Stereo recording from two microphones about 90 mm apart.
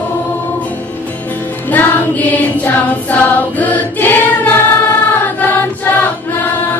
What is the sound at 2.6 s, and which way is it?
Choir, 20° left (ahead or behind).